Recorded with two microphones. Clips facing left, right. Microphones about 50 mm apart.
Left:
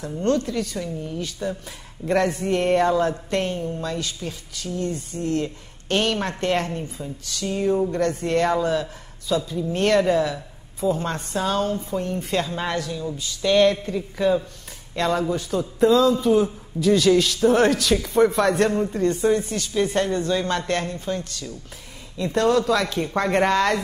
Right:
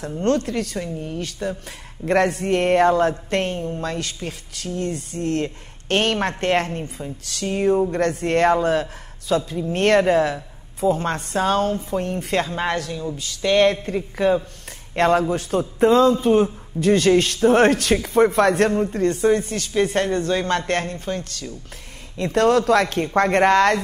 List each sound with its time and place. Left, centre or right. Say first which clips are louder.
0.2 s a man's voice: right 1 dB; right
7.0 s speech: right 1 dB; centre
7.4 s speech: right 3 dB; right
15.0 s a man's voice: right 4 dB; right
18.7 s speech: right 2 dB; right
18.9 s speech: right 2 dB; right
22.1 s a man's voice: right 2 dB; right